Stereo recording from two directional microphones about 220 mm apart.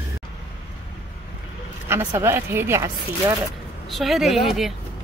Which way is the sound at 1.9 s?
15° right (ahead or behind).